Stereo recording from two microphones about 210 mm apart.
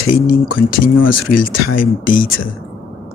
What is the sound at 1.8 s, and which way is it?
Speech, 40° left (ahead or behind).